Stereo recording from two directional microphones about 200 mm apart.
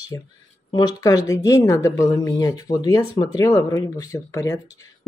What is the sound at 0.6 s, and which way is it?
Speech, 20° left (ahead or behind).